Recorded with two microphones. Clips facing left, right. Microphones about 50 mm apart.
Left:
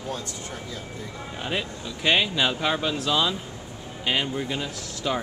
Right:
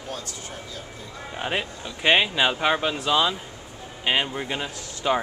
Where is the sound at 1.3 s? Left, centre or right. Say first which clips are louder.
Right 2 dB; right.